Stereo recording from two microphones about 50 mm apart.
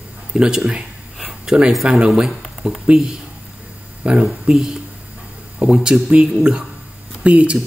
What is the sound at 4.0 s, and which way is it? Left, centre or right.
Speech, right.